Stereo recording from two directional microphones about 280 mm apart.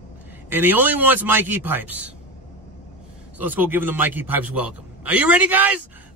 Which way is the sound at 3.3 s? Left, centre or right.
Centre.